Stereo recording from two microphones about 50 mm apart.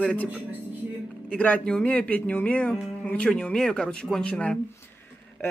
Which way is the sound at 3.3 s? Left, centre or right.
Centre.